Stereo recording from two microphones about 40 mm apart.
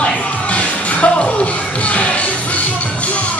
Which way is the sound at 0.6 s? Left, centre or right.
Left.